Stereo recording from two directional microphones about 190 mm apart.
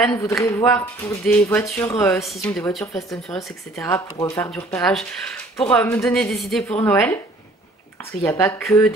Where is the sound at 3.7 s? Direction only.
15° left (ahead or behind).